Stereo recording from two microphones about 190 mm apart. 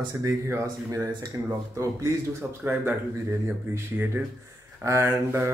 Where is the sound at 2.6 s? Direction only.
10° right (ahead or behind).